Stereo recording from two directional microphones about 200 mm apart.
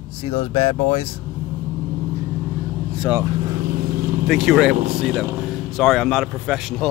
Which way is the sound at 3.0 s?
15° right (ahead or behind).